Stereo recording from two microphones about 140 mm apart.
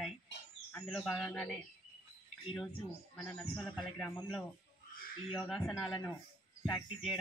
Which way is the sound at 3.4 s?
10° left (ahead or behind).